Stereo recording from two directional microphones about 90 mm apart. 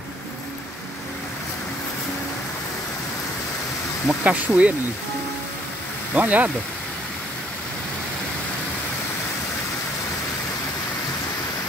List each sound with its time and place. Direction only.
4.1 s speech: 15° right (ahead or behind)
6.1 s speech: 15° right (ahead or behind)